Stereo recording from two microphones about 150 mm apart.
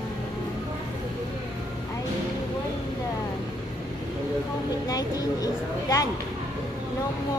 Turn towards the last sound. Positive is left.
turn(degrees=25)  # may be behind; listen again after turning